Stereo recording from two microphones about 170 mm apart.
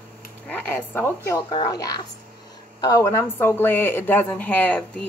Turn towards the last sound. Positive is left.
turn(degrees=10)  # may be behind; listen again after turning